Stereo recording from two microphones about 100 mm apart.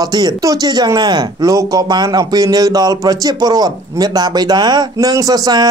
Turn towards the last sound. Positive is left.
turn(degrees=-40)  # may be behind; listen again after turning